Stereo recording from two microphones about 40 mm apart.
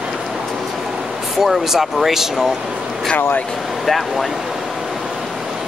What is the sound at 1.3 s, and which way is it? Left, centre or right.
Speech, centre.